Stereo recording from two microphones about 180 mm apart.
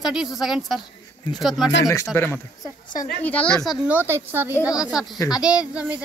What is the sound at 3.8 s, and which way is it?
Speech, 10° right (ahead or behind).